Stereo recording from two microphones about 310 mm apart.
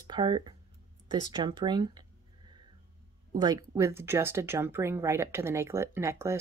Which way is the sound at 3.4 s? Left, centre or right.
Centre.